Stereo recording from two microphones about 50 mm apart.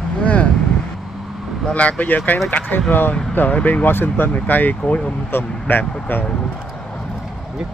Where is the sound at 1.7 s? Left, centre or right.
Left.